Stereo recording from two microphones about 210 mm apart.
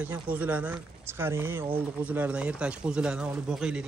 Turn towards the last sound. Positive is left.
turn(degrees=-5)  # may be behind; listen again after turning